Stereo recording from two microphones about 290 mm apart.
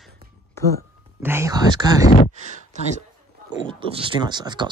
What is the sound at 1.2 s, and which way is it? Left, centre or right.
Speech, centre.